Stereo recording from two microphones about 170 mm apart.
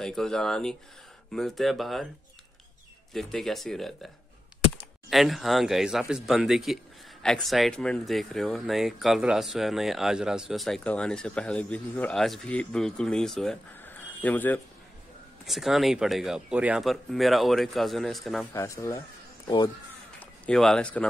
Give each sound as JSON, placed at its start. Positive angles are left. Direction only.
{"t": 0.0, "sound": "speech", "side_deg": 0}
{"t": 3.1, "sound": "speech", "side_deg": 0}
{"t": 5.1, "sound": "speech", "side_deg": 0}
{"t": 15.4, "sound": "speech", "side_deg": 0}
{"t": 18.5, "sound": "speech", "side_deg": 15}
{"t": 20.2, "sound": "speech", "side_deg": 5}